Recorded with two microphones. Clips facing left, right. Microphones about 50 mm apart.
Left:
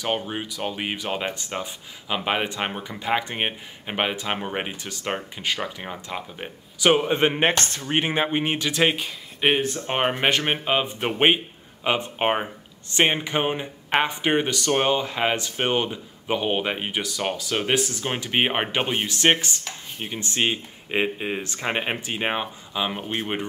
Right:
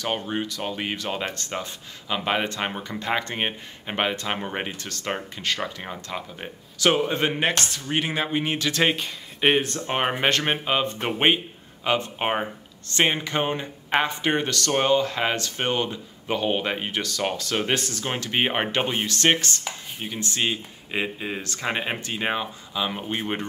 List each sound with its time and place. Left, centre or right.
0.0 s speech: centre